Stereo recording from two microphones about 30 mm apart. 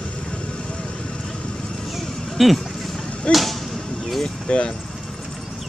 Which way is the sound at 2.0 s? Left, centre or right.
Centre.